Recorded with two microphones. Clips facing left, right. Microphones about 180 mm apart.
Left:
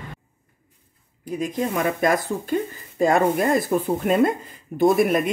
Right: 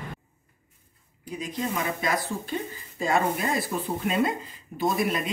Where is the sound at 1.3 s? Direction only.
50° left (ahead or behind).